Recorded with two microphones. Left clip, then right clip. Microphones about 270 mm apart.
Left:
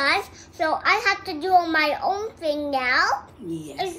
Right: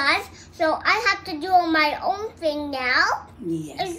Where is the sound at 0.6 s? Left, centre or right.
Centre.